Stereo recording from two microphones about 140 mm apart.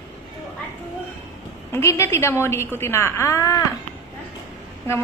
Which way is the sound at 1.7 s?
20° left (ahead or behind).